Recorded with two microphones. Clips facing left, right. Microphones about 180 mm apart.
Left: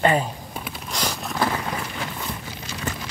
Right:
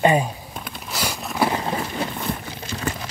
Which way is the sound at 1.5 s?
30° right (ahead or behind).